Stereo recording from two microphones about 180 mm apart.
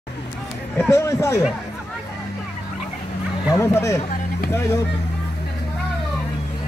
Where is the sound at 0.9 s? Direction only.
15° left (ahead or behind).